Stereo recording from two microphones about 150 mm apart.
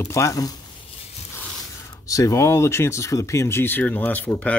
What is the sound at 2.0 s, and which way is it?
Speech, 20° left (ahead or behind).